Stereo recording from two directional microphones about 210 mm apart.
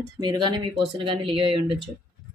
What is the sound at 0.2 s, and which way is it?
Speech, 20° right (ahead or behind).